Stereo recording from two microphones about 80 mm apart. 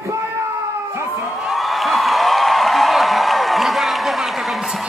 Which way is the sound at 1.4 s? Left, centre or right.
Centre.